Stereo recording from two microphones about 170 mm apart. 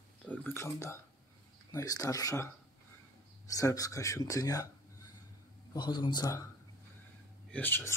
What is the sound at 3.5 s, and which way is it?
Speech, 20° left (ahead or behind).